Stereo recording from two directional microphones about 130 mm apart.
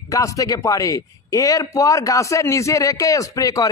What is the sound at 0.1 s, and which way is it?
A man's voice, 25° left (ahead or behind).